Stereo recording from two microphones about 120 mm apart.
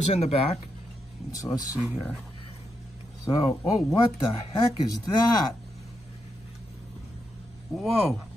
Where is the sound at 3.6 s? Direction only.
35° left (ahead or behind).